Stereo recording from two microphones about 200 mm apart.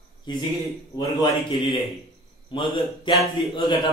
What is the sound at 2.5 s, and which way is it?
Speech, 25° left (ahead or behind).